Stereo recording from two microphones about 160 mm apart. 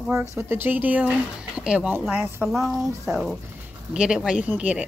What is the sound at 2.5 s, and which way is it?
Speech, centre (ahead or behind).